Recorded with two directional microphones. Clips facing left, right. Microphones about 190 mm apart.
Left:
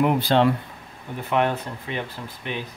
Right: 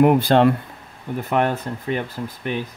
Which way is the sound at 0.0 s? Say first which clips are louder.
Right 5 dB; 50° right (ahead or behind).